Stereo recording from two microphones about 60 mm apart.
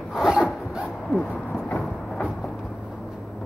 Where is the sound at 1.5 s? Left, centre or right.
Centre.